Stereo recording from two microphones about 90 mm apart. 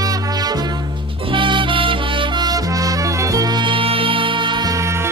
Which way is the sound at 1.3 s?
70° right (ahead or behind).